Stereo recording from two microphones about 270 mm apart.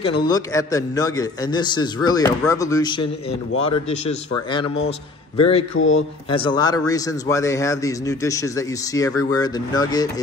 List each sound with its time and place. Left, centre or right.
0.0 s a man's voice: centre
5.4 s speech: left
5.8 s a man's voice: left
6.3 s a man's voice: centre